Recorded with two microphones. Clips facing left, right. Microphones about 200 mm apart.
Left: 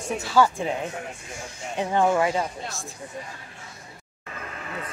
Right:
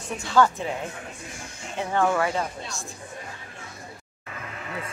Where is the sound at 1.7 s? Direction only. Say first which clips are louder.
Left 2 dB; 15° left (ahead or behind).